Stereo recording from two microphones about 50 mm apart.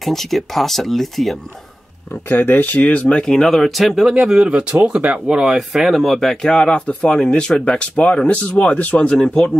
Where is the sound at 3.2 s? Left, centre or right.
Centre.